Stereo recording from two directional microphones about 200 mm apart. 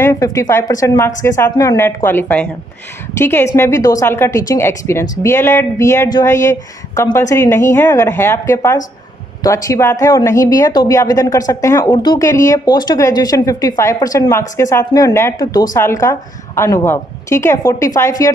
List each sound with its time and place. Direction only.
0.0 s speech: 15° left (ahead or behind)